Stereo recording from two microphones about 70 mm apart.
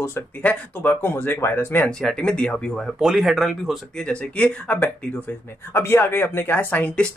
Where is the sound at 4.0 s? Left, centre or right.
Centre.